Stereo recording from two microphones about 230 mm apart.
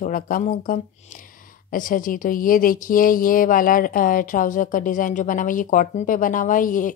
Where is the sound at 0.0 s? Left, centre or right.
Left.